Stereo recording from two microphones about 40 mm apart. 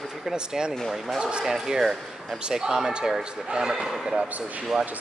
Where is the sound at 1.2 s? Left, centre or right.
Centre.